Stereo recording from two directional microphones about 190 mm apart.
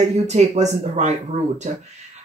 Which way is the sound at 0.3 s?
35° right (ahead or behind).